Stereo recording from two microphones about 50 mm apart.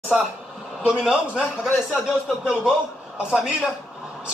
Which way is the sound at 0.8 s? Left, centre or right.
Centre.